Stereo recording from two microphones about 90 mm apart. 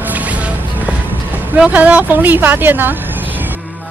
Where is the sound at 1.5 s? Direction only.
15° right (ahead or behind).